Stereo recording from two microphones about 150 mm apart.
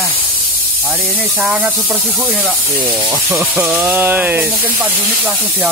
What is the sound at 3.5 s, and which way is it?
A man's voice, 5° right (ahead or behind).